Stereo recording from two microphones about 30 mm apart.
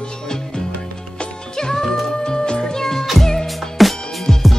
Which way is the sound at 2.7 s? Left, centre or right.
Centre.